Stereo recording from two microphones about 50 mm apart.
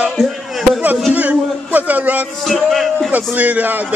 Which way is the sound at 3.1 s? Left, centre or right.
Right.